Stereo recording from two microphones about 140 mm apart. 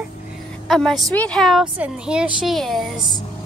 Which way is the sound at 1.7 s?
10° right (ahead or behind).